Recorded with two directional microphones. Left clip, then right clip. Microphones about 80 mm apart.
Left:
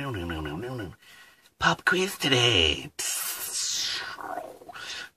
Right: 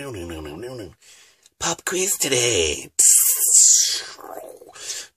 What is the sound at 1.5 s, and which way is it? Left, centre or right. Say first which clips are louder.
Speech: left 2 dB; right.